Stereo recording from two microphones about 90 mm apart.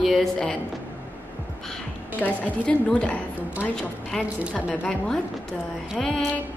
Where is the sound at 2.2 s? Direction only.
15° left (ahead or behind).